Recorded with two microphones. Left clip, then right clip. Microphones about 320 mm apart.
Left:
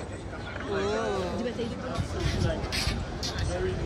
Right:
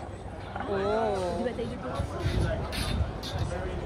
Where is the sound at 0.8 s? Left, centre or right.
Right.